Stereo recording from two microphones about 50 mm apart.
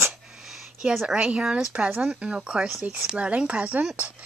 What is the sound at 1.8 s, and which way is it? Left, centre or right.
Speech, right.